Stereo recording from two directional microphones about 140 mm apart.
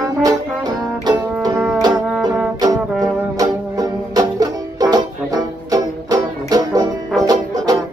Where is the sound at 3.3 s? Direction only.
25° right (ahead or behind).